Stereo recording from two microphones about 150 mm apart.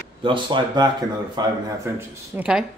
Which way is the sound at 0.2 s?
30° right (ahead or behind).